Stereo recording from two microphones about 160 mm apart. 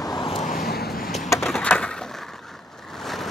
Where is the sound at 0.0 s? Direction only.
25° left (ahead or behind).